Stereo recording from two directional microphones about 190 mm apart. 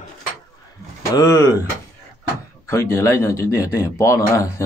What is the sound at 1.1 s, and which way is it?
Speech, 15° left (ahead or behind).